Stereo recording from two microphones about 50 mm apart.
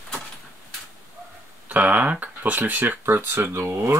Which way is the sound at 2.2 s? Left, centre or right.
Right.